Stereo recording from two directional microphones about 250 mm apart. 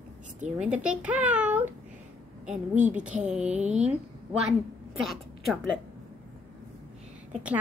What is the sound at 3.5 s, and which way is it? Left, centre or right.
Speech, right.